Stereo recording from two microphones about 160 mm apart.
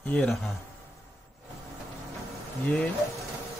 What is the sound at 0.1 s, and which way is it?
Speech, 5° left (ahead or behind).